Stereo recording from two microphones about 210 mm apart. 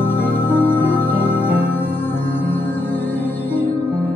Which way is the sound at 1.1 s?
25° left (ahead or behind).